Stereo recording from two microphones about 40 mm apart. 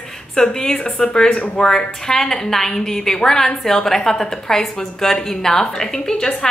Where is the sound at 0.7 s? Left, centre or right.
Left.